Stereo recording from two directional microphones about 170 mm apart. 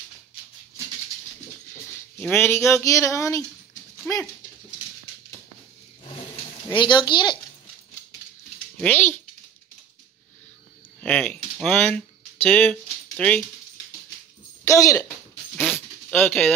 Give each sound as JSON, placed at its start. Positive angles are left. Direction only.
{"t": 2.3, "sound": "speech", "side_deg": 15}
{"t": 6.7, "sound": "speech", "side_deg": 30}
{"t": 8.7, "sound": "speech", "side_deg": 10}
{"t": 11.0, "sound": "speech", "side_deg": 5}
{"t": 14.7, "sound": "speech", "side_deg": 20}
{"t": 15.6, "sound": "a sound", "side_deg": 0}
{"t": 16.2, "sound": "speech", "side_deg": 10}